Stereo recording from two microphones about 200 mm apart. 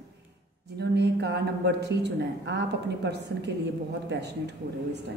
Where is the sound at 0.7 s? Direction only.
55° right (ahead or behind).